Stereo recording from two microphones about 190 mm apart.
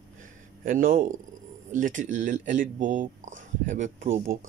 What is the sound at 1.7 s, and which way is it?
Speech, 45° right (ahead or behind).